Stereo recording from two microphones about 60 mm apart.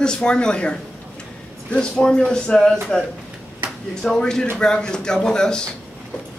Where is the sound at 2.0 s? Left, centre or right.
Centre.